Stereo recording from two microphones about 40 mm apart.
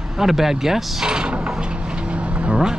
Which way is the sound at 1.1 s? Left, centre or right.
Right.